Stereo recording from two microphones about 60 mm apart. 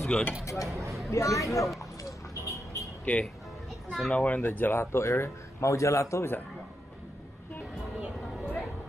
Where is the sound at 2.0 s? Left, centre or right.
Left.